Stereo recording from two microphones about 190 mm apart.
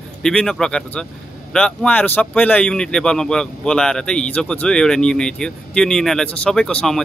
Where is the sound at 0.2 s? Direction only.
5° left (ahead or behind).